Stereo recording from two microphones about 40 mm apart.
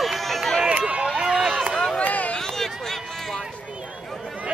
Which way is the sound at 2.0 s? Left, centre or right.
Left.